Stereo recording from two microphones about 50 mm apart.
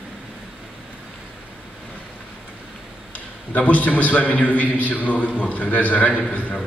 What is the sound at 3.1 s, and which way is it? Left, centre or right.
A man's voice, left.